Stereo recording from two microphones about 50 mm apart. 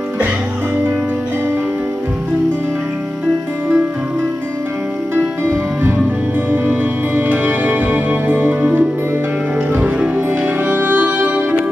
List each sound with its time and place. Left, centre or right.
6.5 s music: right